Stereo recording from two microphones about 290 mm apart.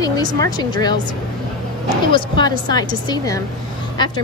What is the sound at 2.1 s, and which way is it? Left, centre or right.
A woman's voice, centre.